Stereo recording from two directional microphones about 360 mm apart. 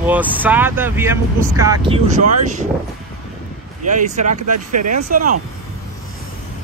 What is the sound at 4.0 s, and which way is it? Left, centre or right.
Speech, centre.